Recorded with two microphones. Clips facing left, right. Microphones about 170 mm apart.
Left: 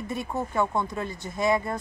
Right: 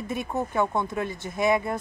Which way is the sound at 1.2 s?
10° right (ahead or behind).